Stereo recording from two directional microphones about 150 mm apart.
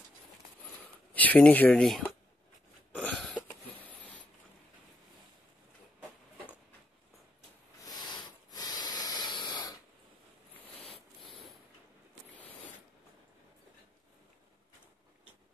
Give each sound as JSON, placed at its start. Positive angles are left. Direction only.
{"t": 1.1, "sound": "speech", "side_deg": 10}
{"t": 3.0, "sound": "a sound", "side_deg": 5}
{"t": 7.8, "sound": "hiss", "side_deg": 30}